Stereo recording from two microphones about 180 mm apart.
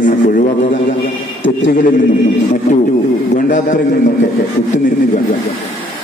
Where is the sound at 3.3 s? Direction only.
45° left (ahead or behind).